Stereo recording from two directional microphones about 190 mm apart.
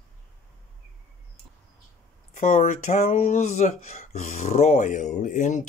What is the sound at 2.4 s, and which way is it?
Speech, 40° left (ahead or behind).